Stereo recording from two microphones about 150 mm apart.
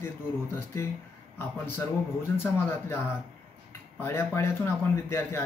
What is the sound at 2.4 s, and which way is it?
Speech, 15° left (ahead or behind).